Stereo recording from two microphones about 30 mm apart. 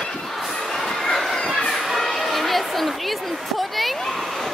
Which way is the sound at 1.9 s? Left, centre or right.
Centre.